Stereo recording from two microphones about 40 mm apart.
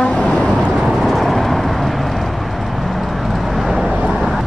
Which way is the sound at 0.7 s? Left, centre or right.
Centre.